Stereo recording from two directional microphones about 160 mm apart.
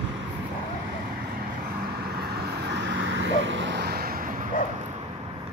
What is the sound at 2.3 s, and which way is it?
Vehicle, 90° right.